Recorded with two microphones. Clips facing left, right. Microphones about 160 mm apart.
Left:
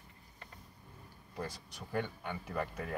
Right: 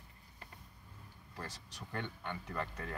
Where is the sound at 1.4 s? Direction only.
10° left (ahead or behind).